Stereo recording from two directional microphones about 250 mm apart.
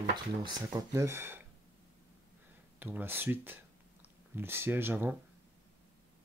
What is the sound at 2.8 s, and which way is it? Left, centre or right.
Speech, centre.